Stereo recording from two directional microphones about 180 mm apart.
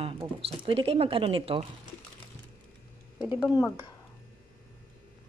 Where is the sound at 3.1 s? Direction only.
10° right (ahead or behind).